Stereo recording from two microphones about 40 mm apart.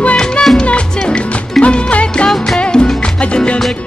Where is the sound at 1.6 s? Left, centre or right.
Left.